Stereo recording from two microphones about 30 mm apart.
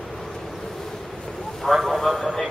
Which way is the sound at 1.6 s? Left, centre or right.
Centre.